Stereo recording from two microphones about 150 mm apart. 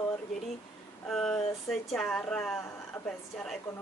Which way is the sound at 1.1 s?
5° left (ahead or behind).